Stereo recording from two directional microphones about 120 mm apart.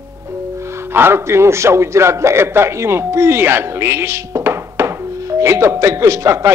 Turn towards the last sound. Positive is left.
turn(degrees=-25)  # may be behind; listen again after turning